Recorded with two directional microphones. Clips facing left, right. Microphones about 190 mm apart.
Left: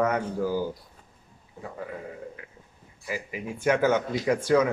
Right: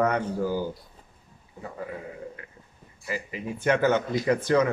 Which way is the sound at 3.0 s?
10° left (ahead or behind).